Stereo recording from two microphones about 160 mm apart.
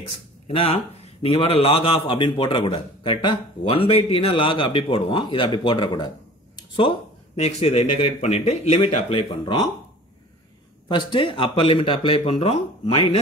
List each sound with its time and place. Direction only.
1.2 s a man's voice: 35° left (ahead or behind)
10.9 s a man's voice: 30° left (ahead or behind)